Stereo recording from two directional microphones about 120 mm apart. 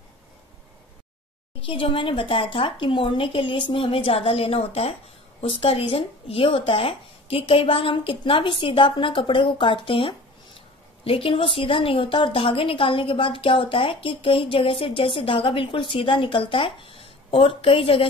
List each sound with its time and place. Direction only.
1.6 s a woman's voice: 45° left (ahead or behind)